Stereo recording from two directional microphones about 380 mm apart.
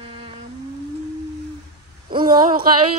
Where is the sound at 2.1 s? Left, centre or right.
Centre.